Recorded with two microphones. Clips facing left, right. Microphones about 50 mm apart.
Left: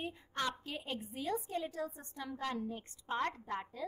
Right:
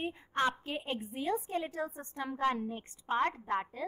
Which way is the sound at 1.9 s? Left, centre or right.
Right.